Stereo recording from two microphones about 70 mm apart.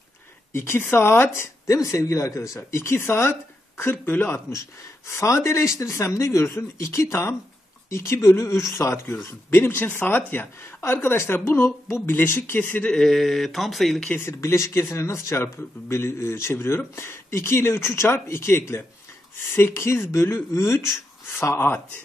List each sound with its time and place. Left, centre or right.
0.5 s speech: left
4.5 s speech: left
12.9 s speech: centre
14.4 s speech: left